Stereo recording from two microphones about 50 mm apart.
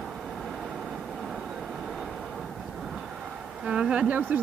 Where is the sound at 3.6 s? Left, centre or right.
Centre.